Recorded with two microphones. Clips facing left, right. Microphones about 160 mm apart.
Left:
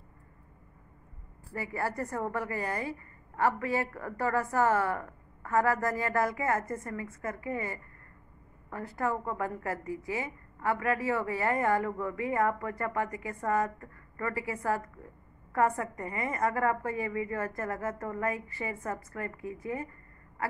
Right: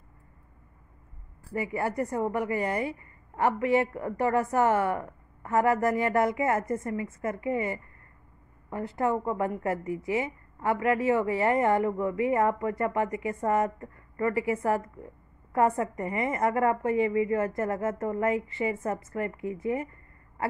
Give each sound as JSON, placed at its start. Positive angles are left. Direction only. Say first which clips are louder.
{"t": 1.5, "sound": "speech", "louder": "right 4 dB", "side_deg": -20}